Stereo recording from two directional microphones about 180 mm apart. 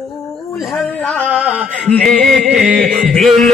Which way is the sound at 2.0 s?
5° left (ahead or behind).